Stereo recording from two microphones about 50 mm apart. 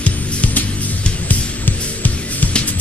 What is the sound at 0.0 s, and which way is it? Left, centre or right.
Music, left.